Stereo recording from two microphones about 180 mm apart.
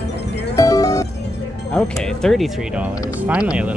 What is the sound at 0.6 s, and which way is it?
Music, 20° left (ahead or behind).